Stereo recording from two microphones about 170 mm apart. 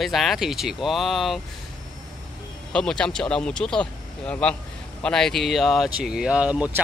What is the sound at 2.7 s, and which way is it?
Speech, 5° left (ahead or behind).